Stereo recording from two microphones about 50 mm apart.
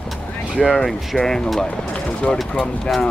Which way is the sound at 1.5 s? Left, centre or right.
Centre.